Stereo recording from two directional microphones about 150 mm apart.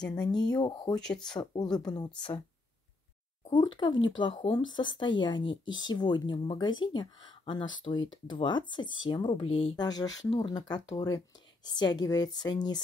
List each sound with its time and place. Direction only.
0.1 s speech: 25° left (ahead or behind)
3.5 s speech: 30° left (ahead or behind)
9.8 s speech: 25° left (ahead or behind)